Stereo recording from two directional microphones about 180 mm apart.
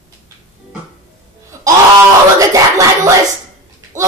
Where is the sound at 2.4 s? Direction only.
20° right (ahead or behind).